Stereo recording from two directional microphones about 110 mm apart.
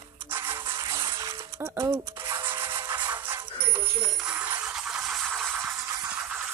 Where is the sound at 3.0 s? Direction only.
15° right (ahead or behind); by 5.4 s centre (ahead or behind).